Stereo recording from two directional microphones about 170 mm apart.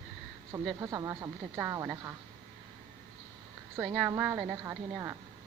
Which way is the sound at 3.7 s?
10° right (ahead or behind).